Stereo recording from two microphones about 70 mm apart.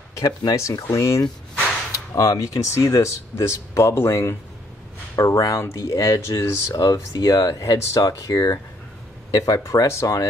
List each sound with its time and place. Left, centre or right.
0.1 s speech: left
0.6 s speech: left
6.2 s speech: left
6.7 s speech: left